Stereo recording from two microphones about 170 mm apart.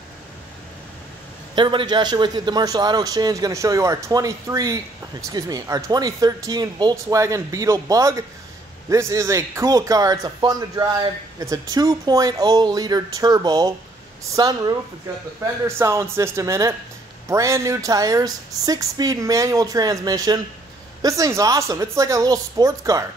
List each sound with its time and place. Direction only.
1.5 s speech: 30° right (ahead or behind)
15.8 s speech: 15° right (ahead or behind)